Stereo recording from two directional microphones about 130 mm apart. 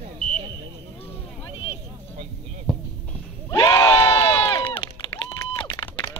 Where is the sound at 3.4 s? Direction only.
30° left (ahead or behind).